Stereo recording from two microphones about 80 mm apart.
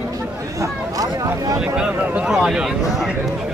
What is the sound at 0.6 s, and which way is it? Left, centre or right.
Speech, right.